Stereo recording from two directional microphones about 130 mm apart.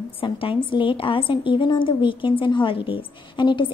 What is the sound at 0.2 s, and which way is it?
A woman's voice, 40° left (ahead or behind).